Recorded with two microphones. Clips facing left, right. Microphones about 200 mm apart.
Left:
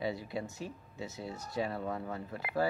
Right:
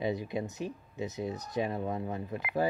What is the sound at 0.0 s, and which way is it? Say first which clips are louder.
Speech: right 4 dB; 20° right (ahead or behind).